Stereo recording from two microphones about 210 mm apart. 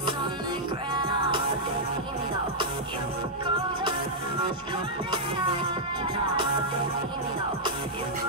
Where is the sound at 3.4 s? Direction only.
20° right (ahead or behind).